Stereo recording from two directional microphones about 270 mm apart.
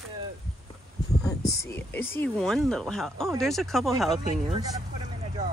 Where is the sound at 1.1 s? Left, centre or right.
Centre.